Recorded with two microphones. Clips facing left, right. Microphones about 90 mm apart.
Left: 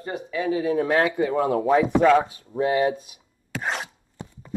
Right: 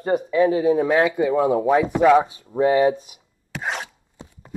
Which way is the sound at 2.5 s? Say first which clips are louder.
Right 4 dB; 30° right (ahead or behind).